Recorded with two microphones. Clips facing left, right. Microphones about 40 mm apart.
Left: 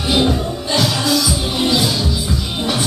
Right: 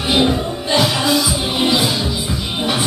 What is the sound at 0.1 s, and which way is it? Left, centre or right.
Music, centre.